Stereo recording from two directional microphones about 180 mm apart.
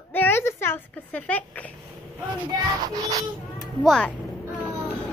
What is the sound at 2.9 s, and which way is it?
Speech, 20° right (ahead or behind).